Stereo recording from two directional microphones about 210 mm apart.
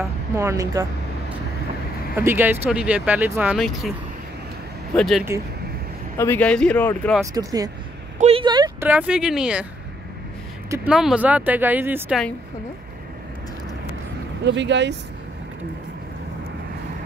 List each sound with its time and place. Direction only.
0.4 s speech: 15° right (ahead or behind)
2.1 s speech: 10° right (ahead or behind)
4.9 s speech: centre (ahead or behind)
6.1 s speech: 10° left (ahead or behind)
7.3 s speech: 15° right (ahead or behind)
8.8 s speech: 5° right (ahead or behind)
10.7 s speech: 5° right (ahead or behind)
14.4 s speech: 55° right (ahead or behind)